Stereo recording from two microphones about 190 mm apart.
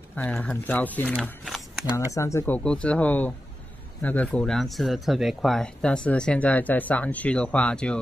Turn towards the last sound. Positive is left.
turn(degrees=5)  # may be behind; listen again after turning